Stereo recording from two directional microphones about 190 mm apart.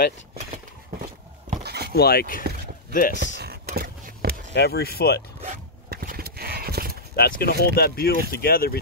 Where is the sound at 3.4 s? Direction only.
55° right (ahead or behind).